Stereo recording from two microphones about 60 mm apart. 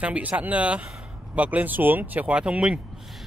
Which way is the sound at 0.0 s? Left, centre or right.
Right.